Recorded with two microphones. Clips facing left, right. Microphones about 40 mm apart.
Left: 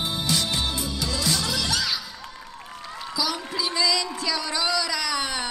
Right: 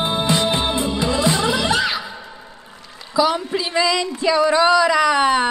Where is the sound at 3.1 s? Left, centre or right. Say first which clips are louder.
Right 11 dB; right.